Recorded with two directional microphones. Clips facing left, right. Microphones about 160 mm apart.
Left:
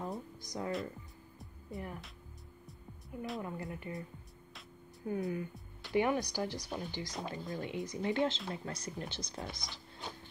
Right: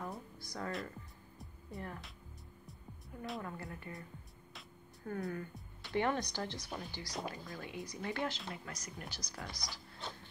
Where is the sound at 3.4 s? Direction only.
20° left (ahead or behind).